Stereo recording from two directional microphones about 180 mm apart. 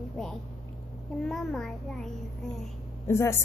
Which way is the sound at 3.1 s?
15° left (ahead or behind).